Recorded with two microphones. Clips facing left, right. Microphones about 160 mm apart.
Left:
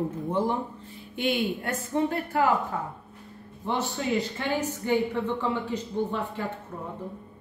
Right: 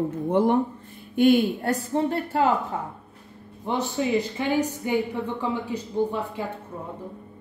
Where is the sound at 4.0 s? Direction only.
15° right (ahead or behind).